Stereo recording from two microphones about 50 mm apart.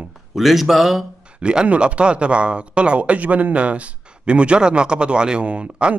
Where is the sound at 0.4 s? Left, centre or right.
Centre.